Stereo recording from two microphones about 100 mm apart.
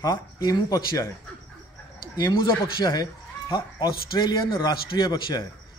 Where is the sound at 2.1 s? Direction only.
45° left (ahead or behind).